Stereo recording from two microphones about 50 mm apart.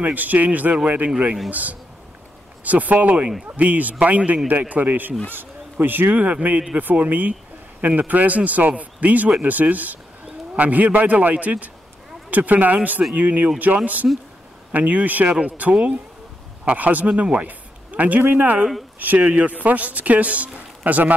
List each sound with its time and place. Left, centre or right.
0.0 s speech: right
1.1 s speech: centre
1.5 s speech: right
14.0 s speech: centre
14.7 s speech: right